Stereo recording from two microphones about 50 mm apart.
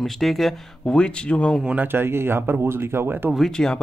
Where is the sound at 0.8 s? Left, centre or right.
Centre.